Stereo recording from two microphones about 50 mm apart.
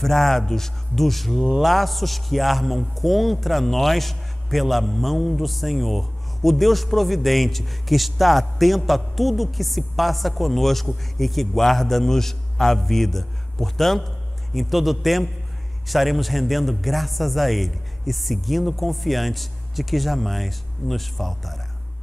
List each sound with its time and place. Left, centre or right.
0.0 s a man's voice: centre